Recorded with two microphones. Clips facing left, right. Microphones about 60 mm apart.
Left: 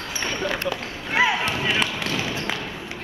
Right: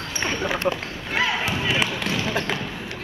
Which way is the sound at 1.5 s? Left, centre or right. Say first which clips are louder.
Even; centre.